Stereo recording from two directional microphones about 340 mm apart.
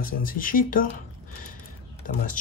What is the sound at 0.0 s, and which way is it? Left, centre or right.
Speech, left.